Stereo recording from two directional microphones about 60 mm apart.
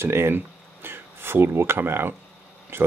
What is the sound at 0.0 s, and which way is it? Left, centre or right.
Speech, right.